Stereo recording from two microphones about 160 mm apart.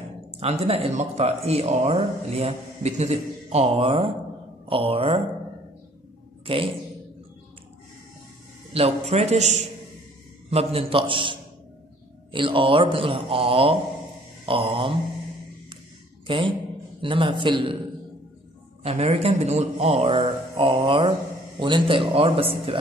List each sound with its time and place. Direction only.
0.4 s speech: 40° right (ahead or behind)
6.4 s a woman's voice: 35° right (ahead or behind)
8.7 s a man's voice: 40° right (ahead or behind)
14.4 s a sound: 35° right (ahead or behind)
16.3 s speech: 30° right (ahead or behind)
18.8 s speech: 40° right (ahead or behind)